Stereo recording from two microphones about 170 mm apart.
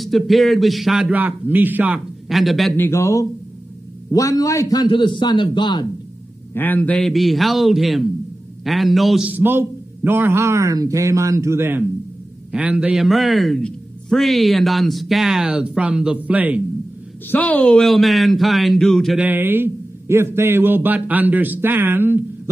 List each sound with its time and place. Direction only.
0.0 s a man's voice: centre (ahead or behind)
2.8 s a man's voice: 15° left (ahead or behind)
6.5 s a man's voice: 10° left (ahead or behind); by 16.6 s 10° right (ahead or behind)
17.3 s a man's voice: 10° left (ahead or behind)
19.2 s a man's voice: 10° right (ahead or behind)